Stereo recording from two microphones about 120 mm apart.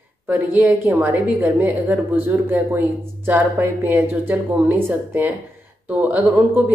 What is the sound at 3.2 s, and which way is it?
Speech, 15° right (ahead or behind).